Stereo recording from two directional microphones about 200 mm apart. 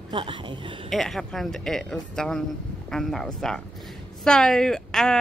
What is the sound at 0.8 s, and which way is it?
Speech, centre (ahead or behind).